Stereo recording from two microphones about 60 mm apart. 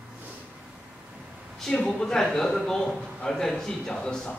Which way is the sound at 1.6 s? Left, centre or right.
Centre.